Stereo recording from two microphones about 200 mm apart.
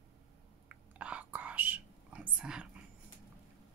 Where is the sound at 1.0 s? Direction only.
5° right (ahead or behind).